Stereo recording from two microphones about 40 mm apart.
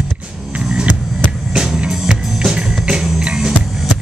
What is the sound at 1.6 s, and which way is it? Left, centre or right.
Music, centre.